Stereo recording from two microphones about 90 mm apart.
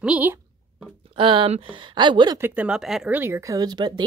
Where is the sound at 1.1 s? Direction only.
70° right (ahead or behind).